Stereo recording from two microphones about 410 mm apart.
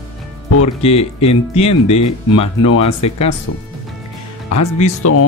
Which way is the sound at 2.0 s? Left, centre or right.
Left.